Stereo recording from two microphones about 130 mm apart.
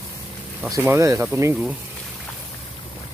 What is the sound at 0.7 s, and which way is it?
Speech, 25° right (ahead or behind).